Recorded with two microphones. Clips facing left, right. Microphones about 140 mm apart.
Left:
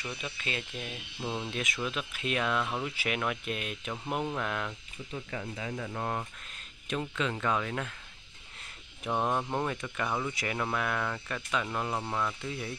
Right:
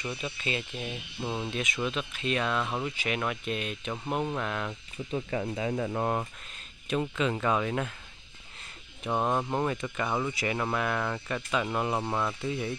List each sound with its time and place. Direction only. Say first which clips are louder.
0.0 s speech: right 4 dB; centre (ahead or behind)
5.1 s speech: right 7 dB; 35° right (ahead or behind)
5.9 s speech: right 3 dB; 20° right (ahead or behind)
6.9 s speech: right 4 dB; 10° right (ahead or behind)
9.5 s speech: right 3 dB; 5° right (ahead or behind)
12.4 s speech: right 5 dB; 5° right (ahead or behind)